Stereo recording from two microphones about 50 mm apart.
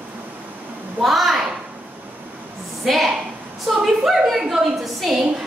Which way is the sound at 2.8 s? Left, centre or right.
Centre.